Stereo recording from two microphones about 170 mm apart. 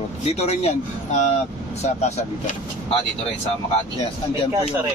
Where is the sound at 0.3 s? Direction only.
40° left (ahead or behind).